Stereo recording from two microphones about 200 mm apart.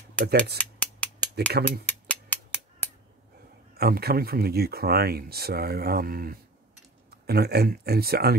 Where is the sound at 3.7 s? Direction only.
50° right (ahead or behind).